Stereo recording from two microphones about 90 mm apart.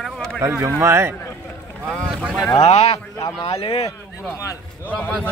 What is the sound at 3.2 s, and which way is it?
Speech, 85° left.